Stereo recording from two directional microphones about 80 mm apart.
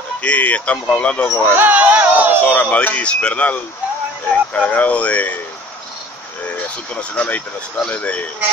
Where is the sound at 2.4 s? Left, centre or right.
Left.